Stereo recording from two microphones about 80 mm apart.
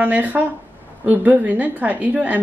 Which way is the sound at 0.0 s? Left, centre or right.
Centre.